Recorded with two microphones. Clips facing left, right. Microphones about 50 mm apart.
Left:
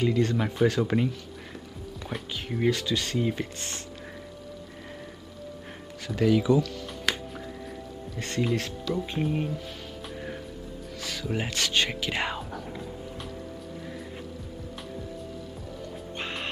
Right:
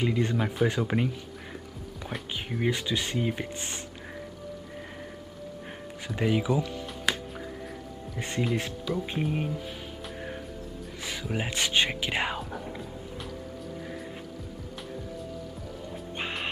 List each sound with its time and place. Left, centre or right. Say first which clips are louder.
0.0 s speech: left 2 dB; centre
0.7 s music: left 2 dB; centre
2.7 s speech: left 1 dB; centre
6.0 s speech: left 4 dB; right
7.1 s music: even; centre
8.2 s speech: left 1 dB; centre
11.0 s music: even; right
11.2 s speech: left 1 dB; centre
12.6 s music: left 1 dB; centre
16.2 s music: right 1 dB; centre